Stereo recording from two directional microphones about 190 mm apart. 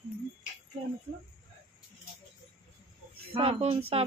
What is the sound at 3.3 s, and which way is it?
Speech, 30° right (ahead or behind).